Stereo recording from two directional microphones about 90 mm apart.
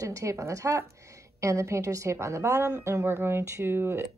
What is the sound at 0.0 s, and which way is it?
A woman's voice, 35° right (ahead or behind).